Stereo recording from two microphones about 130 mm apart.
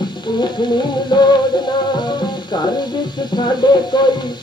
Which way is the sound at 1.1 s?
35° left (ahead or behind).